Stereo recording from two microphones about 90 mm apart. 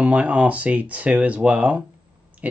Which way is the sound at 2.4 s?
15° right (ahead or behind).